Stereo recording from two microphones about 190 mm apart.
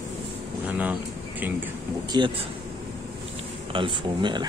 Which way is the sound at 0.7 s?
10° right (ahead or behind).